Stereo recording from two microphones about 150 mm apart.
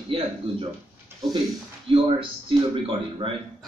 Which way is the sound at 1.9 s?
35° right (ahead or behind).